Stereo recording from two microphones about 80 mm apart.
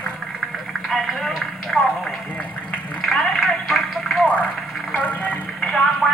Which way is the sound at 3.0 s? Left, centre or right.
Centre.